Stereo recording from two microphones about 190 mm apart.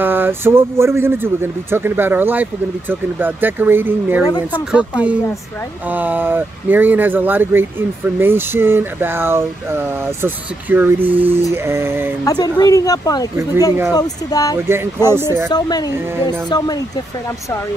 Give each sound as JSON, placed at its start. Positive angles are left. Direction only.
{"t": 0.0, "sound": "speech", "side_deg": -10}
{"t": 12.3, "sound": "speech", "side_deg": 20}
{"t": 15.0, "sound": "speech", "side_deg": -10}
{"t": 16.3, "sound": "speech", "side_deg": 20}